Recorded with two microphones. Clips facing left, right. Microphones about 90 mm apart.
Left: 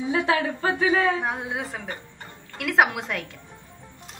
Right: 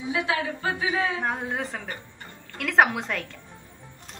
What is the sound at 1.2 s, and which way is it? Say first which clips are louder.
A woman's voice: even; 5° left (ahead or behind).